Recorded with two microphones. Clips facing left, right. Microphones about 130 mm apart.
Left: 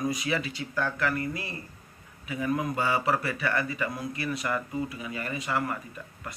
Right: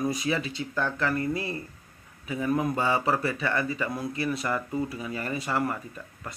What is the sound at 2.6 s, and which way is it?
Speech, 25° right (ahead or behind).